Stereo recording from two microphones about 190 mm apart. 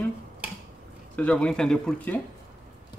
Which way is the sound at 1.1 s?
5° left (ahead or behind).